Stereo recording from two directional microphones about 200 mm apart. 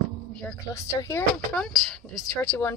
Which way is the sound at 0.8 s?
15° left (ahead or behind).